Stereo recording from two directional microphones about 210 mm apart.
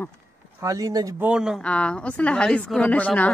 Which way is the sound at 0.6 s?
15° right (ahead or behind).